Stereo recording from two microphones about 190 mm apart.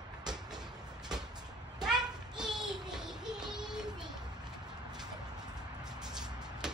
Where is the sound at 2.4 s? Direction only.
Centre (ahead or behind).